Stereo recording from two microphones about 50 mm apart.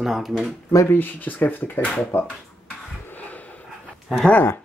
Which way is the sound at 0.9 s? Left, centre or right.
Left.